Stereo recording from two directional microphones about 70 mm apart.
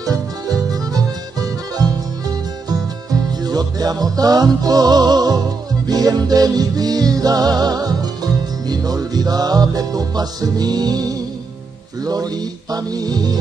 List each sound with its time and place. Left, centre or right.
3.4 s music: right